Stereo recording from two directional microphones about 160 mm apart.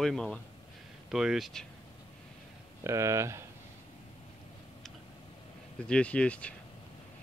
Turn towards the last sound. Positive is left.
turn(degrees=10)  # may be behind; listen again after turning